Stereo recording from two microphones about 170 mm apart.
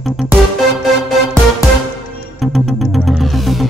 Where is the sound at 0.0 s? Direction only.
Centre (ahead or behind).